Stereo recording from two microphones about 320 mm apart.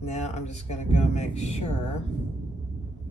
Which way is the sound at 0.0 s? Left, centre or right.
Left.